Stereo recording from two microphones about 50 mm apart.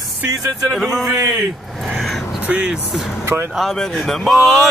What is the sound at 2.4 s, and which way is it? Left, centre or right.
Speech, right.